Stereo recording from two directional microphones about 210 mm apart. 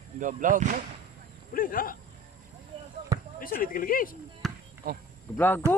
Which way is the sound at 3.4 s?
40° left (ahead or behind).